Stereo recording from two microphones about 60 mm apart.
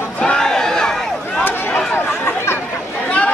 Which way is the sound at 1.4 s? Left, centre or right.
Left.